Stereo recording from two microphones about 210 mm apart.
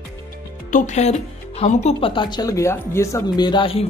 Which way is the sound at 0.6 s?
35° left (ahead or behind).